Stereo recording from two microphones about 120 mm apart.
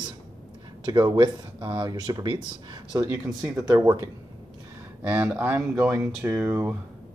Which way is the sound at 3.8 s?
30° right (ahead or behind).